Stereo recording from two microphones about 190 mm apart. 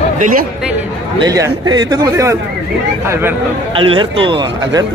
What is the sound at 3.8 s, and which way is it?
Speech, 30° right (ahead or behind).